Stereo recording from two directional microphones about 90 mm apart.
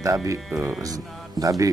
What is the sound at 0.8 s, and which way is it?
Speech, 40° right (ahead or behind).